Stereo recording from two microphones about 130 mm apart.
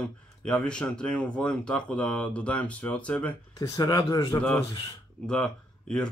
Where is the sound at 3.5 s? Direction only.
30° left (ahead or behind).